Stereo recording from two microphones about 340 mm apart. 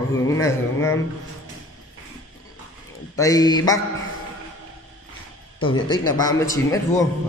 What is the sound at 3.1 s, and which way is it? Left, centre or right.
Speech, centre.